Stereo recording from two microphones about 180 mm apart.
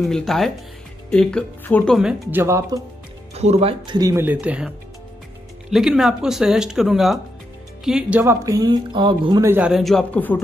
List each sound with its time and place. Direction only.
0.0 s speech: centre (ahead or behind)
2.0 s speech: 5° right (ahead or behind)
2.4 s speech: 15° right (ahead or behind)
3.3 s speech: 35° right (ahead or behind); by 10.4 s 5° left (ahead or behind)